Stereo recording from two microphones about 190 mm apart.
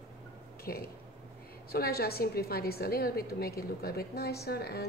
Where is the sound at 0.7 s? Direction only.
50° left (ahead or behind).